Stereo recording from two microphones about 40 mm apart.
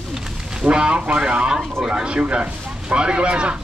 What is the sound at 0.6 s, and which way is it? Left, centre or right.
Speech, right.